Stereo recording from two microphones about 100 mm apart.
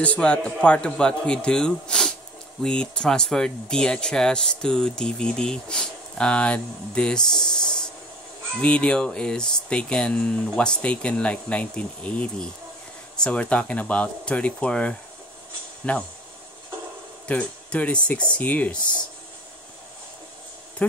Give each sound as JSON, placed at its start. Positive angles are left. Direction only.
{"t": 0.0, "sound": "speech", "side_deg": 10}
{"t": 8.5, "sound": "speech", "side_deg": 10}
{"t": 17.3, "sound": "speech", "side_deg": 10}